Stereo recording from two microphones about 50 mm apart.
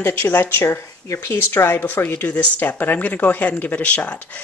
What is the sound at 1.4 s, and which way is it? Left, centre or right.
Speech, left.